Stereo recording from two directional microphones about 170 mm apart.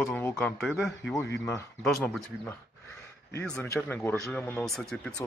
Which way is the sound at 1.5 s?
10° left (ahead or behind).